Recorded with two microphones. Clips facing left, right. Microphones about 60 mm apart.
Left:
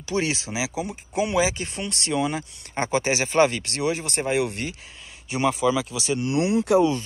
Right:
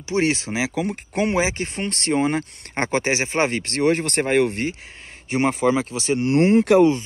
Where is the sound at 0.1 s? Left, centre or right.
Right.